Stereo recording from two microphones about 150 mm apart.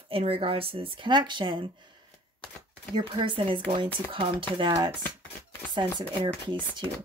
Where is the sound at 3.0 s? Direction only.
35° right (ahead or behind).